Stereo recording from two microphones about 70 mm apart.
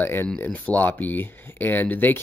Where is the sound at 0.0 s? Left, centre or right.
Left.